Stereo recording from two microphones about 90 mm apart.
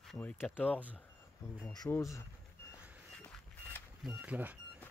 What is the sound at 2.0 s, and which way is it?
Speech, 35° left (ahead or behind).